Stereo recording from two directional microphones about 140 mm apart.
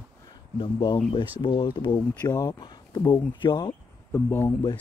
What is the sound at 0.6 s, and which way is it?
Speech, 30° left (ahead or behind).